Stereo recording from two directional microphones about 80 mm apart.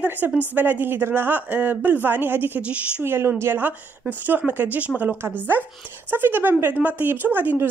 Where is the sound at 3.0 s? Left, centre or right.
Right.